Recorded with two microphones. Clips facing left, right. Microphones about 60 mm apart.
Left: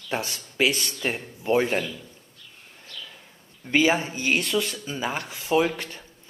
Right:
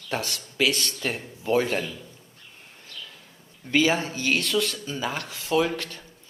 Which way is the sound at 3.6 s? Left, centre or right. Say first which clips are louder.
Left 1 dB; left.